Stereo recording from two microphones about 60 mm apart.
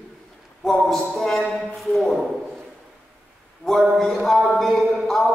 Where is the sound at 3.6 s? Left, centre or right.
Centre.